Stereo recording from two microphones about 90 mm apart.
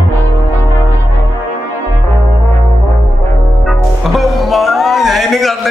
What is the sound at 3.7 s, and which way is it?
Music, centre (ahead or behind).